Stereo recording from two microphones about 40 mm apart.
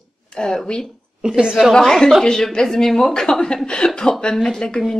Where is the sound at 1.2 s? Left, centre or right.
Centre.